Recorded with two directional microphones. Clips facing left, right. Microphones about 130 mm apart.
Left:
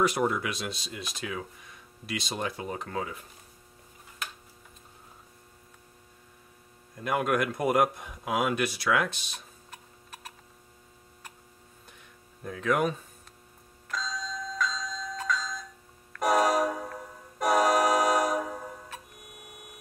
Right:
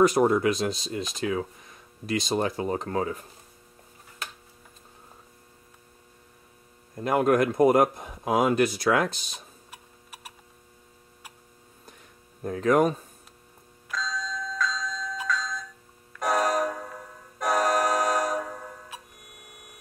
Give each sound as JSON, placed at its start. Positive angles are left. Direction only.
{"t": 0.0, "sound": "speech", "side_deg": -40}
{"t": 2.0, "sound": "speech", "side_deg": -40}
{"t": 7.0, "sound": "speech", "side_deg": -30}
{"t": 9.7, "sound": "tick-tock", "side_deg": -10}
{"t": 12.4, "sound": "speech", "side_deg": -40}
{"t": 13.9, "sound": "bell", "side_deg": 0}
{"t": 15.2, "sound": "music", "side_deg": 0}